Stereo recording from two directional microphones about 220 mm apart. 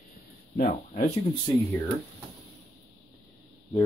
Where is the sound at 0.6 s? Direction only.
30° left (ahead or behind).